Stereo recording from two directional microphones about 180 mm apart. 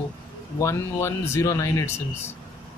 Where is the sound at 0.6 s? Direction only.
15° left (ahead or behind).